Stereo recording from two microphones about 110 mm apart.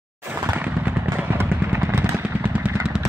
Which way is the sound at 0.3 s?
15° right (ahead or behind).